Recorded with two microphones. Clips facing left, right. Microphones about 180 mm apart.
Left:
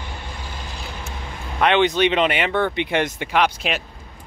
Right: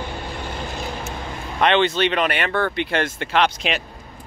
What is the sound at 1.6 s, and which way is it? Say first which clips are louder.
Speech: left 1 dB; 10° left (ahead or behind).